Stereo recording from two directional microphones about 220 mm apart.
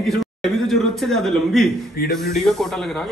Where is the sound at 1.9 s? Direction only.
45° left (ahead or behind).